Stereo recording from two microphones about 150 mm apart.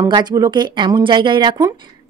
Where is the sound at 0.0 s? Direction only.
25° right (ahead or behind).